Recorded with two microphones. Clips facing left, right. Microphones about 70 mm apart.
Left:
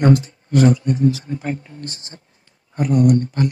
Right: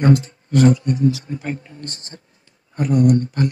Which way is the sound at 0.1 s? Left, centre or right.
Left.